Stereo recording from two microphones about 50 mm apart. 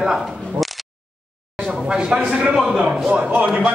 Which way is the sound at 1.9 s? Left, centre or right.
Centre.